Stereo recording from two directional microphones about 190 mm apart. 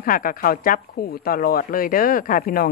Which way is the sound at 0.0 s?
45° left (ahead or behind).